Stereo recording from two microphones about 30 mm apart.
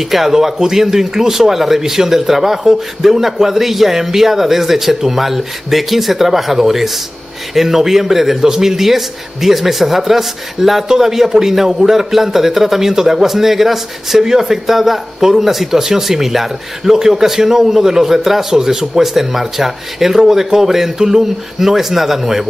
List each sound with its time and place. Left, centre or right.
0.0 s a man's voice: centre